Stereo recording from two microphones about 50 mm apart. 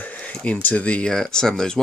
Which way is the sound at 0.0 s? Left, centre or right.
Left.